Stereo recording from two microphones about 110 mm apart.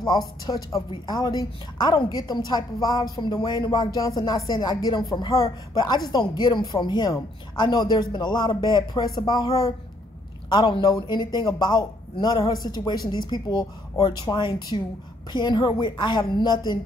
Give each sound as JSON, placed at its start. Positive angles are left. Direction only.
{"t": 0.0, "sound": "a woman's voice", "side_deg": 40}